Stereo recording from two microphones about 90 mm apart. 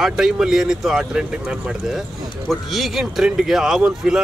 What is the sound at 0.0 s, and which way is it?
Speech, 5° right (ahead or behind).